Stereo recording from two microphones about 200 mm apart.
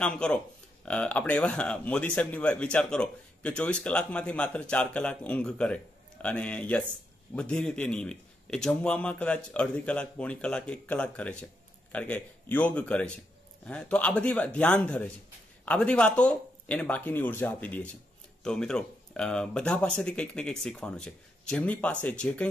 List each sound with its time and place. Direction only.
0.0 s a man's voice: 5° left (ahead or behind)